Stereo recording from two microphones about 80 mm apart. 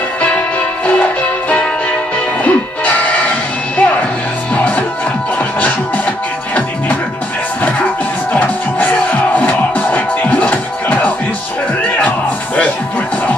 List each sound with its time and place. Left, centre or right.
1.5 s music: centre
8.3 s music: centre